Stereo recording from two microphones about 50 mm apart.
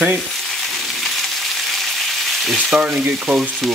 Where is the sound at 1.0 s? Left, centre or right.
Centre.